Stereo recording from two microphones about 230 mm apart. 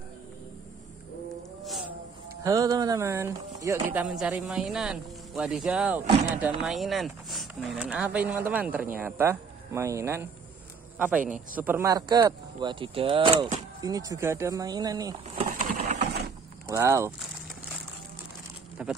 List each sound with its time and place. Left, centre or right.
2.4 s a man's voice: centre
15.6 s a sound: right
16.6 s speech: centre
18.8 s a man's voice: centre